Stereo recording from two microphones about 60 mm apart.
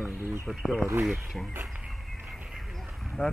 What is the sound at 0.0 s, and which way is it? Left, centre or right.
Speech, right.